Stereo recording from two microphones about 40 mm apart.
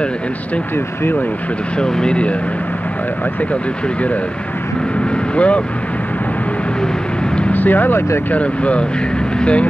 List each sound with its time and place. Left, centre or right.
1.8 s speech: left
5.3 s speech: left
7.5 s speech: left
8.4 s speech: left